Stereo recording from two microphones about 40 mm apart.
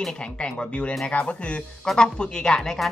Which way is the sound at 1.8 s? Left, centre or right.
Centre.